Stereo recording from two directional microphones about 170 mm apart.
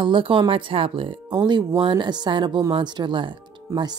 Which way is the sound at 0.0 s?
30° right (ahead or behind).